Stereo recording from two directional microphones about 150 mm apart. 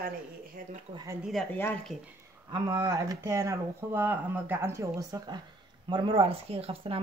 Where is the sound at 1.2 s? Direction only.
Centre (ahead or behind).